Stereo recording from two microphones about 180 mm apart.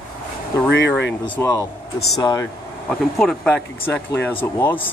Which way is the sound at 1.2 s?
15° left (ahead or behind).